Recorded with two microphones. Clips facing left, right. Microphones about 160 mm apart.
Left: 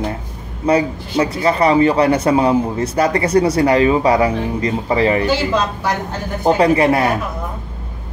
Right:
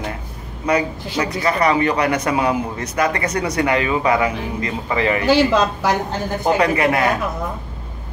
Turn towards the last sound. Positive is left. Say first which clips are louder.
# left 4 dB
turn(degrees=30)  # may be behind; listen again after turning